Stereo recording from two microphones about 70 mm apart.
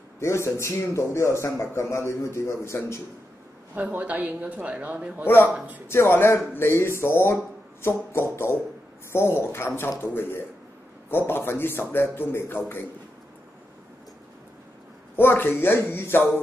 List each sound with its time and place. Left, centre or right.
0.2 s a man's voice: left
3.7 s a woman's voice: right
5.2 s speech: left
15.1 s speech: left